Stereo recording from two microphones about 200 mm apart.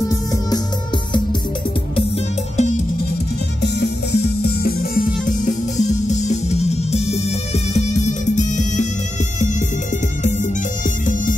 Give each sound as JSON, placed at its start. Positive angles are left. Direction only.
{"t": 0.1, "sound": "music", "side_deg": 15}
{"t": 3.6, "sound": "music", "side_deg": 60}